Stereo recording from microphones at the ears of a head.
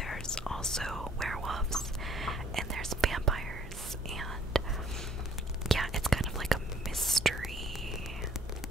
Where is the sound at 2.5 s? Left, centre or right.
Right.